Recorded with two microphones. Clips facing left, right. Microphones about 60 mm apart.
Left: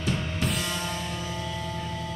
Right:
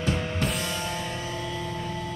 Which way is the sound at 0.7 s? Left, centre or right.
Centre.